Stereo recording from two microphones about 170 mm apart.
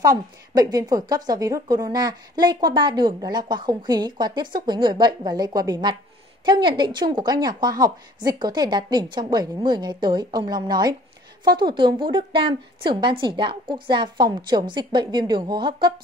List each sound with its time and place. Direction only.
0.0 s a woman's voice: 20° right (ahead or behind)